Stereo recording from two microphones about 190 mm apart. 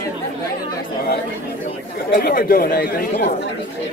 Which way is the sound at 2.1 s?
50° left (ahead or behind).